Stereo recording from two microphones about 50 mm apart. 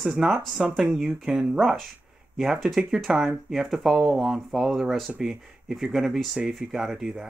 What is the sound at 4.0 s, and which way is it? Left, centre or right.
Speech, centre.